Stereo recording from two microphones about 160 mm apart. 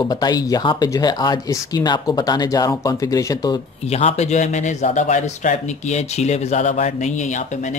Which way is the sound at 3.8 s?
40° left (ahead or behind).